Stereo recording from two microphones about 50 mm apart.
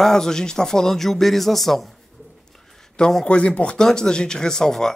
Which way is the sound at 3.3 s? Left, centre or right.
Left.